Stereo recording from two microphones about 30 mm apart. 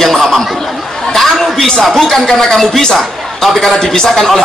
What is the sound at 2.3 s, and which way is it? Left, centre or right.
Speech, centre.